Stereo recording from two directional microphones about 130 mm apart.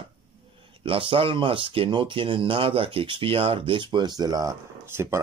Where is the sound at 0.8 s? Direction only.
45° right (ahead or behind).